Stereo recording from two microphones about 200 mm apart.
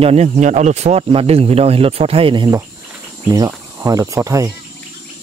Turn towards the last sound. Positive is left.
turn(degrees=-15)  # may be behind; listen again after turning